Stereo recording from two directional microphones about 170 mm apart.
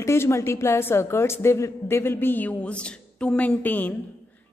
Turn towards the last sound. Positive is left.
turn(degrees=10)  # may be behind; listen again after turning